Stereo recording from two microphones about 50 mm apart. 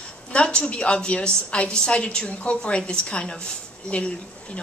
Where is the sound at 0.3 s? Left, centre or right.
Centre.